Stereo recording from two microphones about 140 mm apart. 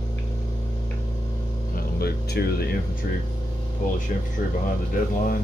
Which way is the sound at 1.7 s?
90° left.